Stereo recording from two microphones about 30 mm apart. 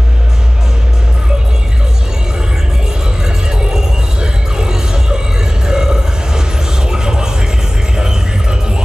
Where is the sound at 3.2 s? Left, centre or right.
Right.